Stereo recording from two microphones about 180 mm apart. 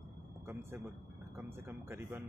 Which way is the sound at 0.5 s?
10° right (ahead or behind).